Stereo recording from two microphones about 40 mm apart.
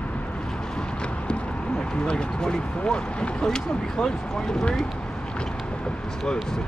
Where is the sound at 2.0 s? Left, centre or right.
Centre.